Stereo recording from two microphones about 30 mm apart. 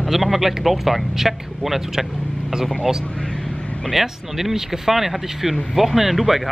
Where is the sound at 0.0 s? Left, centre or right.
Centre.